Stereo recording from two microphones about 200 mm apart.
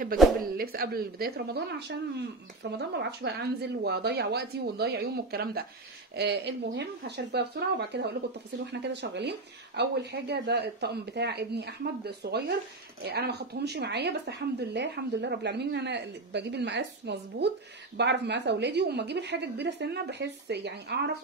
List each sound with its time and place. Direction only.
0.2 s speech: centre (ahead or behind)
0.6 s speech: 50° right (ahead or behind)